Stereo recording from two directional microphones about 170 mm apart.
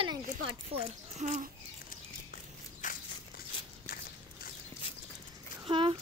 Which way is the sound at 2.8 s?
50° left (ahead or behind).